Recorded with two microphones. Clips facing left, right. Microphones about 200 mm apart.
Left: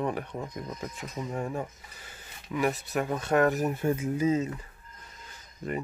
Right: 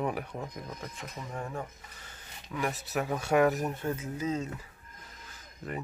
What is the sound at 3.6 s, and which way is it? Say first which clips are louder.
Speech: left 5 dB; 10° left (ahead or behind).